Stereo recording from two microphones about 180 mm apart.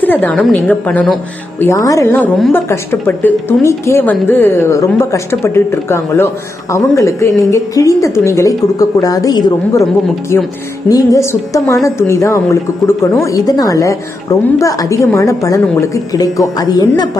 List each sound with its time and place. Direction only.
0.0 s a woman's voice: 10° left (ahead or behind)
2.1 s a woman's voice: 5° left (ahead or behind); by 9.8 s 20° left (ahead or behind)
10.9 s a woman's voice: 20° left (ahead or behind)